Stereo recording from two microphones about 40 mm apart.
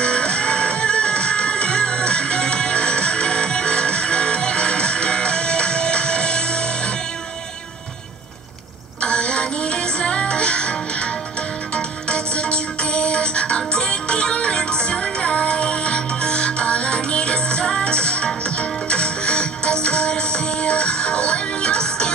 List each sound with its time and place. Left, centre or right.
0.0 s music: left
9.0 s music: left